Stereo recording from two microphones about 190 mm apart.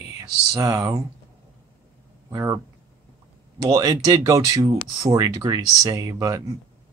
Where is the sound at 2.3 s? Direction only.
20° right (ahead or behind).